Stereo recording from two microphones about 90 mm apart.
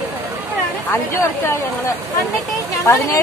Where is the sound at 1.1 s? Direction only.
30° left (ahead or behind).